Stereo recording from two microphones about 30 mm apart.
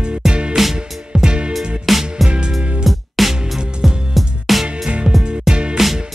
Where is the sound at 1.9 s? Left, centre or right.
Centre.